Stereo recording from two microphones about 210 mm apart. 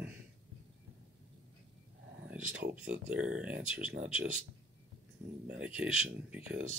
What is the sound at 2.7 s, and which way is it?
Speech, 5° right (ahead or behind).